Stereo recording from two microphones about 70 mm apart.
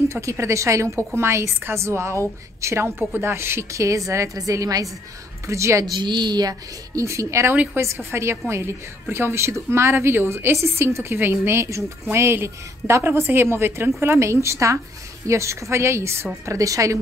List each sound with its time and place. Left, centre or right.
0.1 s a woman's voice: right
5.5 s a woman's voice: right
5.9 s speech: right
7.0 s a woman's voice: right
16.4 s a woman's voice: right